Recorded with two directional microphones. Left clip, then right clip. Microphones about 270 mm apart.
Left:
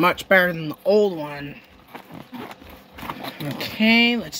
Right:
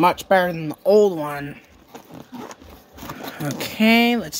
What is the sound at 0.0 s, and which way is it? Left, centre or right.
Speech, centre.